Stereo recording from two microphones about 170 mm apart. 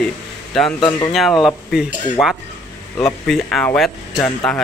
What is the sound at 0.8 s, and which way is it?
Speech, 25° left (ahead or behind).